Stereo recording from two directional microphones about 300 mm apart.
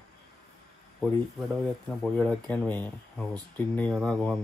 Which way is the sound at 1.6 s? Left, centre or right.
Centre.